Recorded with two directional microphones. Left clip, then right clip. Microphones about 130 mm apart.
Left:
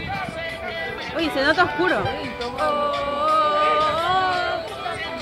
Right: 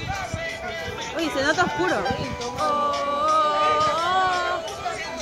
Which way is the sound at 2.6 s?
25° right (ahead or behind).